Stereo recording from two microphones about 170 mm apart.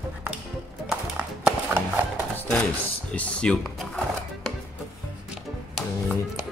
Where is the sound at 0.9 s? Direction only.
5° right (ahead or behind).